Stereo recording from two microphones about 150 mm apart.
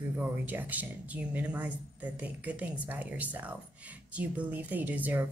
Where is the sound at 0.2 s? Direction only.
10° right (ahead or behind).